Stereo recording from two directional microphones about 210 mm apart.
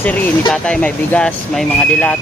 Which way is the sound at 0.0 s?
5° left (ahead or behind).